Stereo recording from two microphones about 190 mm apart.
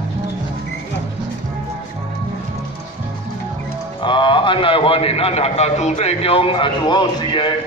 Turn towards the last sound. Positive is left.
turn(degrees=25)  # may be behind; listen again after turning